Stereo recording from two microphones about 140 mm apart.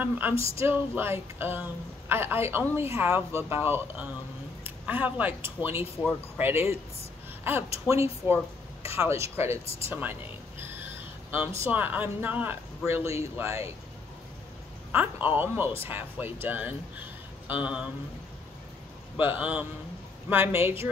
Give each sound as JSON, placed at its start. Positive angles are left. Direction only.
{"t": 0.2, "sound": "speech", "side_deg": -15}
{"t": 10.6, "sound": "a sound", "side_deg": -15}
{"t": 11.6, "sound": "speech", "side_deg": -15}
{"t": 14.9, "sound": "speech", "side_deg": -15}
{"t": 19.1, "sound": "speech", "side_deg": -10}